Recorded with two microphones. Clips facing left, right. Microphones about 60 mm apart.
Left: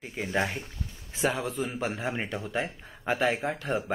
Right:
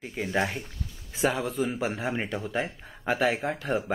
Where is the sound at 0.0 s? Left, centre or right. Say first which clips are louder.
Right 1 dB; centre.